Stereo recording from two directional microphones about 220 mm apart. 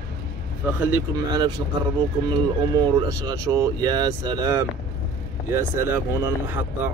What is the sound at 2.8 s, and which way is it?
Speech, 15° right (ahead or behind).